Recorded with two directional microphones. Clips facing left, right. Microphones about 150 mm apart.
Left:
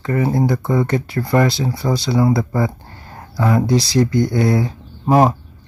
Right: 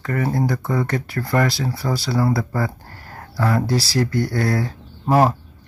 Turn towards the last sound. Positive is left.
turn(degrees=15)  # may be behind; listen again after turning